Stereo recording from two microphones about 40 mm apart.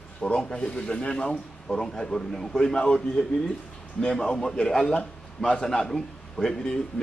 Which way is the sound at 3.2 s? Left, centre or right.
Left.